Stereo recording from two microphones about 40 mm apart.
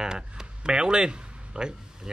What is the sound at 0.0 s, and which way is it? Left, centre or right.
Speech, centre.